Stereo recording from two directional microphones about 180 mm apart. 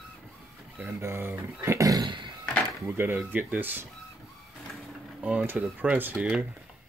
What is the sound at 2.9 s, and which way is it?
Speech, 15° right (ahead or behind).